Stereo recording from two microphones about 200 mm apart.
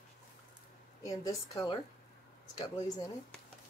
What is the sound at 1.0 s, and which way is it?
Speech, 20° left (ahead or behind).